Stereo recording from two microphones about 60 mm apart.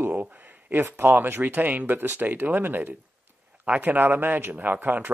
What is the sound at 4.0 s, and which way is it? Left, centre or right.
Speech, right.